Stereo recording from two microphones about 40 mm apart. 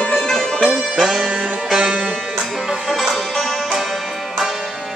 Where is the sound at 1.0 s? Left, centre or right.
Centre.